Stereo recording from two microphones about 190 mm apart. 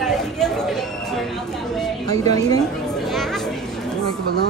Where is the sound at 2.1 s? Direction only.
20° left (ahead or behind).